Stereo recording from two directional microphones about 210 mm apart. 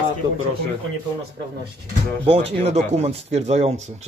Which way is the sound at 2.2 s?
30° right (ahead or behind).